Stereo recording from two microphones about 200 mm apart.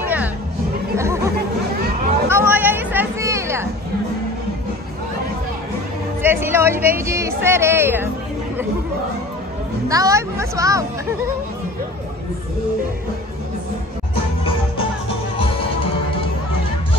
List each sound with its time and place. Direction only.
0.0 s music: 10° right (ahead or behind)
2.2 s a sound: 10° right (ahead or behind)
6.2 s speech: 10° right (ahead or behind)
9.8 s speech: 15° right (ahead or behind)
15.3 s music: 25° left (ahead or behind)